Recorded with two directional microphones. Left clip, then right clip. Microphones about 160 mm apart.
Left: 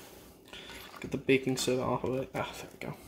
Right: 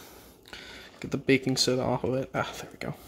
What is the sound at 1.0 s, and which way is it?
Speech, 45° right (ahead or behind).